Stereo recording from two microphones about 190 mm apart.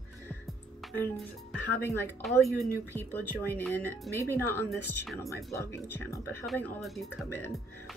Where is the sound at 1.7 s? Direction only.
10° left (ahead or behind).